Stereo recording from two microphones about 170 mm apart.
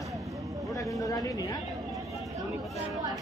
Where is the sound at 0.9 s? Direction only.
20° left (ahead or behind).